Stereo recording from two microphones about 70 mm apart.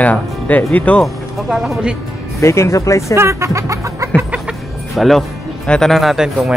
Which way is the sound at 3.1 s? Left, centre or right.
Right.